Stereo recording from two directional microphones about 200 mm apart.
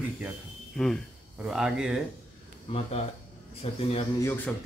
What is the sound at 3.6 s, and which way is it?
Speech, 30° left (ahead or behind).